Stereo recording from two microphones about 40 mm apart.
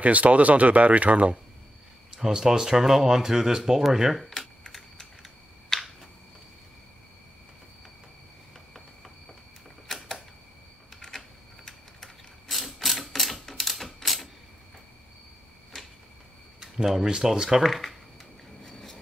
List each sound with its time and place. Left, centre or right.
0.0 s speech: right
2.1 s speech: centre
4.3 s typing: centre
5.7 s a sound: centre
9.8 s typewriter: centre
10.9 s a sound: centre
12.4 s mechanisms: centre
15.7 s a sound: centre
16.5 s a sound: centre
17.3 s speech: centre
17.6 s speech: centre
18.6 s train: centre